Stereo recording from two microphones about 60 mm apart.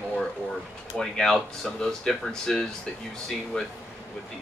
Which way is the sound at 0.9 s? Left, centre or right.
Centre.